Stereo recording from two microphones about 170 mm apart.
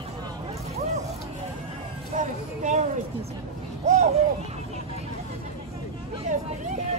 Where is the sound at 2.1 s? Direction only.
45° right (ahead or behind).